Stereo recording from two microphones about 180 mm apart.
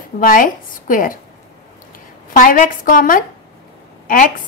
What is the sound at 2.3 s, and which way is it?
A woman's voice, 50° left (ahead or behind).